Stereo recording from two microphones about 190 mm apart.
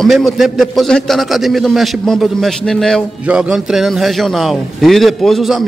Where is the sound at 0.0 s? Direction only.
Centre (ahead or behind).